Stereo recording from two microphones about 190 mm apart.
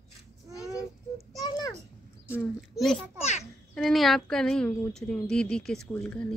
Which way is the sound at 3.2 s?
35° left (ahead or behind).